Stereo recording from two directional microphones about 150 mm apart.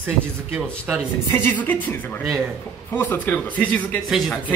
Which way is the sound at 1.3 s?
15° left (ahead or behind).